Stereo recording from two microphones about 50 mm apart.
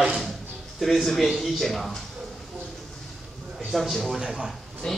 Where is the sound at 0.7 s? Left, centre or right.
Centre.